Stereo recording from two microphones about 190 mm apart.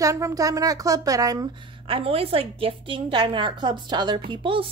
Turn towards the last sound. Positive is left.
turn(degrees=-25)  # may be behind; listen again after turning